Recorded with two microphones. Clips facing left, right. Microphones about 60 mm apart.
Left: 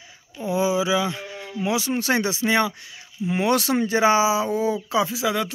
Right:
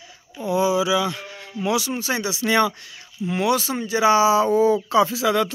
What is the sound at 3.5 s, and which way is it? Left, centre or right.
Speech, left.